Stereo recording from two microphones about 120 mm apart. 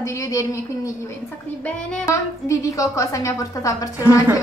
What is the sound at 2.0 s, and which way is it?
A woman's voice, 25° left (ahead or behind).